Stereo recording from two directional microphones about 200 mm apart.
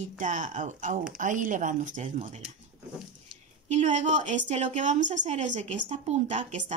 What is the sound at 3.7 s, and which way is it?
A woman's voice, 35° right (ahead or behind).